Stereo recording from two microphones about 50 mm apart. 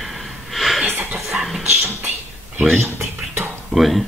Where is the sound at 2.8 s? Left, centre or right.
Right.